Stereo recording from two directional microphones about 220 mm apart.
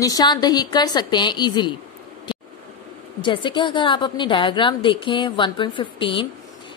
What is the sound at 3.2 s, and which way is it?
A woman's voice, 20° left (ahead or behind).